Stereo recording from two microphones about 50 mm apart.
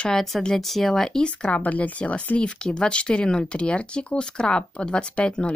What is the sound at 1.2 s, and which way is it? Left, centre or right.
Speech, left.